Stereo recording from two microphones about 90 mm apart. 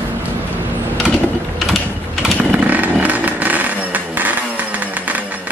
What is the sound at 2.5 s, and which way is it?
Vehicle, 15° right (ahead or behind).